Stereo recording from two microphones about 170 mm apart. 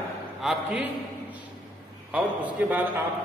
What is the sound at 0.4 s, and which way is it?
Speech, centre (ahead or behind).